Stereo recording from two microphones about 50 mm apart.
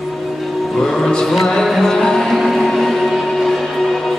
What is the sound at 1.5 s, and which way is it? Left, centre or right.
Music, centre.